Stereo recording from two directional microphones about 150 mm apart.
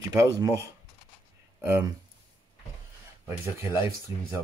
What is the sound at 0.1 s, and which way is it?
Speech, 25° right (ahead or behind).